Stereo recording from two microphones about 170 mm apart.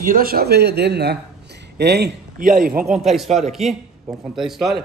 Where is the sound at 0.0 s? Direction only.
55° right (ahead or behind); by 2.4 s 75° right (ahead or behind).